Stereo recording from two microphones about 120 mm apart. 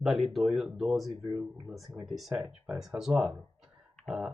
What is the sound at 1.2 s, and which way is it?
Speech, 20° right (ahead or behind).